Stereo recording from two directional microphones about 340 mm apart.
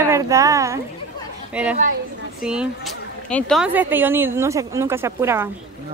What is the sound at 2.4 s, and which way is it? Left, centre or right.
Speech, centre.